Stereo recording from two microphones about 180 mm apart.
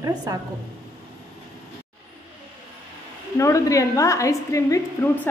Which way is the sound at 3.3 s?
15° left (ahead or behind).